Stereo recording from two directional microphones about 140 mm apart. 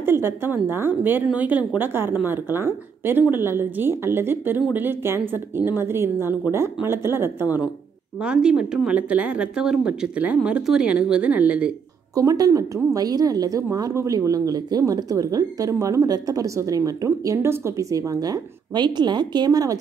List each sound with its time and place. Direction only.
0.0 s speech: 15° right (ahead or behind)
7.4 s a woman's voice: 25° left (ahead or behind)
8.2 s speech: 5° right (ahead or behind)
12.2 s a woman's voice: 25° right (ahead or behind)